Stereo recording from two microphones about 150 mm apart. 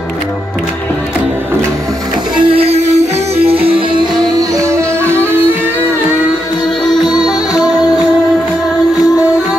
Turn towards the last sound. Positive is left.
turn(degrees=25)  # may be behind; listen again after turning